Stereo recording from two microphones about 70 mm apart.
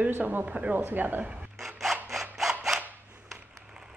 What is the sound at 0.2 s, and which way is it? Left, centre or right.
Speech, right.